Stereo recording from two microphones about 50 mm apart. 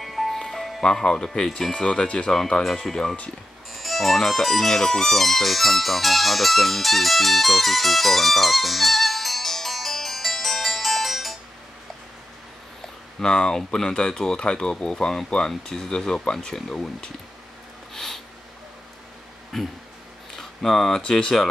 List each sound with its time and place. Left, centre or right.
0.0 s music: centre
0.8 s speech: centre
13.2 s speech: centre
17.9 s a sound: centre
19.5 s speech: centre
20.3 s a sound: centre
21.1 s speech: centre